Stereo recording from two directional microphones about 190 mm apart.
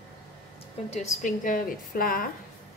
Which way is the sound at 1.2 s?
45° left (ahead or behind).